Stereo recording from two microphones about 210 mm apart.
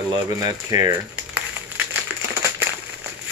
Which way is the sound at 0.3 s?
15° right (ahead or behind).